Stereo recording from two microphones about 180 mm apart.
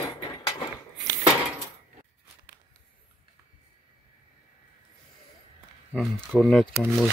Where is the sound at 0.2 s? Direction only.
20° left (ahead or behind).